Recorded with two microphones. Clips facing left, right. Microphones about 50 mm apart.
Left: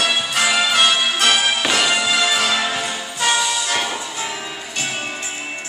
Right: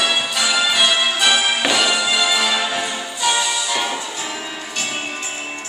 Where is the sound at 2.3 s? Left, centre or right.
Left.